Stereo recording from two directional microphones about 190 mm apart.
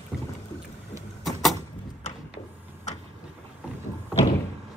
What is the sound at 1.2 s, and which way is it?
Vehicle, centre (ahead or behind).